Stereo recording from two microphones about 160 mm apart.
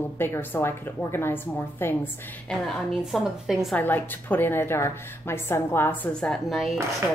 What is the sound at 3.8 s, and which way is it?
A woman's voice, 10° left (ahead or behind).